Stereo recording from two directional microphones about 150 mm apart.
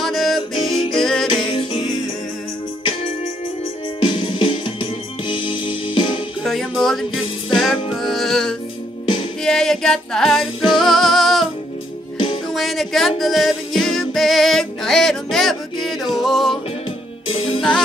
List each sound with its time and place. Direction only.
0.0 s music: centre (ahead or behind)
1.3 s music: 35° left (ahead or behind)
4.0 s music: 30° left (ahead or behind)
6.4 s music: centre (ahead or behind)
9.4 s a sound: 5° left (ahead or behind)
10.8 s music: centre (ahead or behind)
12.5 s music: centre (ahead or behind)
17.3 s music: 35° left (ahead or behind)